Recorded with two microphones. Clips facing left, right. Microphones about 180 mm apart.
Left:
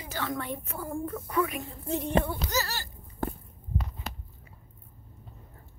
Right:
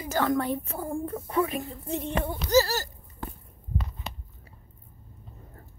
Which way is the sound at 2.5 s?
35° right (ahead or behind).